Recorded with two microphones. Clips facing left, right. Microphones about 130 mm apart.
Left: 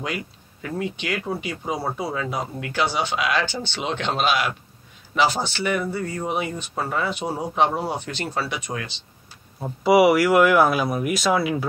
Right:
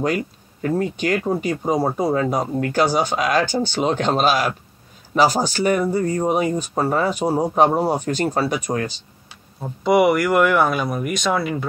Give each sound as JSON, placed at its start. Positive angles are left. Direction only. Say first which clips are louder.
{"t": 0.0, "sound": "speech", "louder": "right 8 dB", "side_deg": -45}
{"t": 9.6, "sound": "speech", "louder": "even", "side_deg": 5}